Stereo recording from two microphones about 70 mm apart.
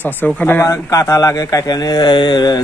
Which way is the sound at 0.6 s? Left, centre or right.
Left.